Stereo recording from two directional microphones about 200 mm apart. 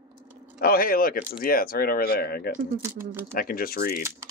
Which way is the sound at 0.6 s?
45° left (ahead or behind).